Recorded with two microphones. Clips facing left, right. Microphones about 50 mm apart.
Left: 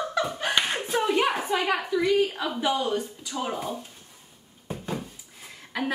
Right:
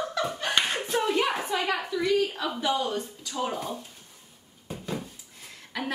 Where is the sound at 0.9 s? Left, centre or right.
Centre.